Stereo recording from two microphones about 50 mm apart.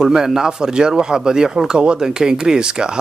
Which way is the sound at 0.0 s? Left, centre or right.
Centre.